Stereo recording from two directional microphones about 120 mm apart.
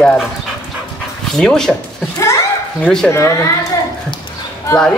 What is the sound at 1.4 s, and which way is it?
Speech, 5° left (ahead or behind).